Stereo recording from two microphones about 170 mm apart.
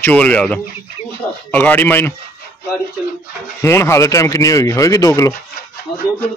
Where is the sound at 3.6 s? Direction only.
15° left (ahead or behind).